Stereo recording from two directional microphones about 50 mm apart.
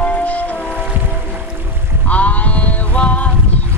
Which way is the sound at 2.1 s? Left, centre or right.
Left.